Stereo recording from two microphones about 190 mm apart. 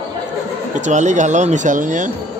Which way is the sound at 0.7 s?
40° right (ahead or behind).